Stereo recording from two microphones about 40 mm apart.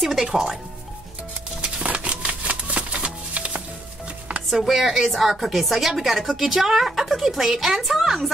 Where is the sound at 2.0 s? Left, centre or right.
Right.